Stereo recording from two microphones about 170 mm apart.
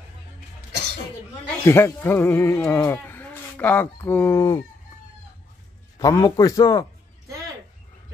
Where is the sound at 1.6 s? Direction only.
15° left (ahead or behind).